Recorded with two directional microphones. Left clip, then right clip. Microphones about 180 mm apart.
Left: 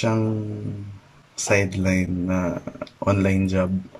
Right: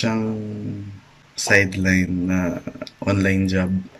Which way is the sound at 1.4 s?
15° left (ahead or behind).